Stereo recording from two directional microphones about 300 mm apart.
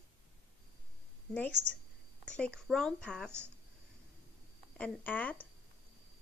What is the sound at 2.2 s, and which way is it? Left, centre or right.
A woman's voice, centre.